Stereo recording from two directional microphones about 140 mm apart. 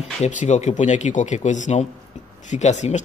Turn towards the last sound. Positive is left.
turn(degrees=55)  # may be behind; listen again after turning